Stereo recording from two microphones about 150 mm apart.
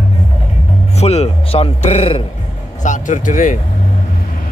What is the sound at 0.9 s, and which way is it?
Music, 45° left (ahead or behind).